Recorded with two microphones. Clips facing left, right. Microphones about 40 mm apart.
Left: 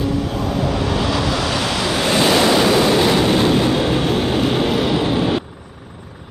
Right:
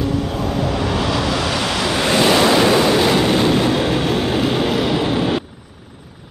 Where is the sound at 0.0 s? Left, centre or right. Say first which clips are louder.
Even; centre.